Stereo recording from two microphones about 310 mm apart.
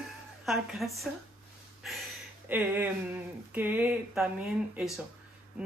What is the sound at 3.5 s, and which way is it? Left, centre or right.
Speech, centre.